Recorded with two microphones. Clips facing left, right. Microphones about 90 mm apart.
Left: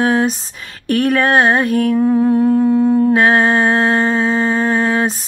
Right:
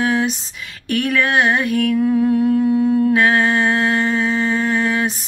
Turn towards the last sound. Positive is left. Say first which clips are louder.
# left 3 dB
turn(degrees=35)  # may be behind; listen again after turning